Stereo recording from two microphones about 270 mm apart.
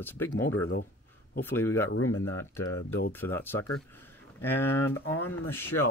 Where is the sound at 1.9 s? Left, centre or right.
Left.